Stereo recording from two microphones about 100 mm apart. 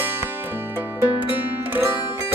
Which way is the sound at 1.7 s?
20° right (ahead or behind).